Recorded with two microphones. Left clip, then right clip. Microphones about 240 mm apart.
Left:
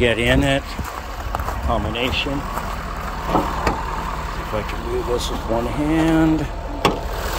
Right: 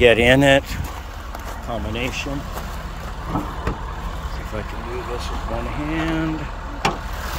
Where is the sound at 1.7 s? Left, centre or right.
Centre.